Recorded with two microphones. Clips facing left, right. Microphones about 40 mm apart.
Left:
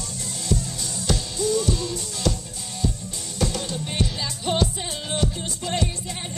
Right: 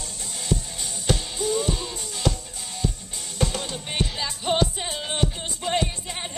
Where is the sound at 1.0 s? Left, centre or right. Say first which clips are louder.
Left 1 dB; right.